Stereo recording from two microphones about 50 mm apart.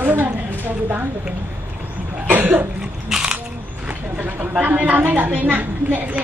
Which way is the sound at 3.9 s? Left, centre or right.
Right.